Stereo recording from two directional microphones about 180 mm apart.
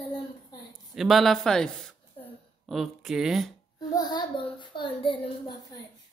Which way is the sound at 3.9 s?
25° left (ahead or behind).